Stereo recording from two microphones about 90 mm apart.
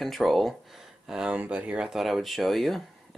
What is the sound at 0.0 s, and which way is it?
Speech, centre (ahead or behind).